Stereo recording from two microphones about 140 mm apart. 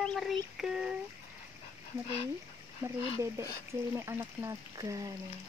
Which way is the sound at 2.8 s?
20° right (ahead or behind).